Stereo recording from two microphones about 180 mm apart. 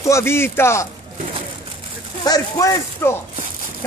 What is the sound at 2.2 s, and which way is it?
Speech, 20° left (ahead or behind).